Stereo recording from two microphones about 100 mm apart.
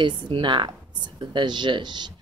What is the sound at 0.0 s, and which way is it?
Speech, 55° right (ahead or behind).